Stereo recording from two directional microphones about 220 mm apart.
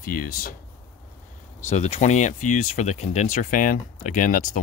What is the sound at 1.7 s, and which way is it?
Speech, 30° left (ahead or behind).